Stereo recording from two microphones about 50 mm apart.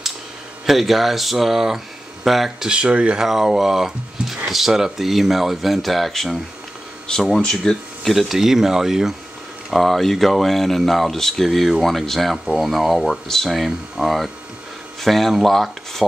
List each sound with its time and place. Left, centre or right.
0.7 s speech: centre
2.7 s speech: centre
3.3 s speech: centre
7.4 s speech: centre
8.0 s speech: centre